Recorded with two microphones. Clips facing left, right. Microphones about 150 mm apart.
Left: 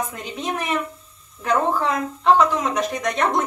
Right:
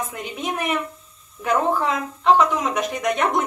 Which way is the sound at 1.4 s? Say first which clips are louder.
Even; centre (ahead or behind).